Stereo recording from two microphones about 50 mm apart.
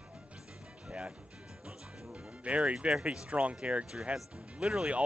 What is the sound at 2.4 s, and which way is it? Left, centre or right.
Speech, right.